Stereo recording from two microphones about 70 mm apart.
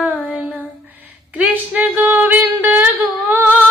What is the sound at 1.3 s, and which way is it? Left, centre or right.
Music, right.